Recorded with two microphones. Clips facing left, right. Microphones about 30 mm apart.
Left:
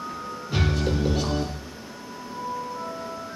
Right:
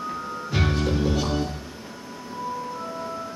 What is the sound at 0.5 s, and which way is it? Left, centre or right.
Music, centre.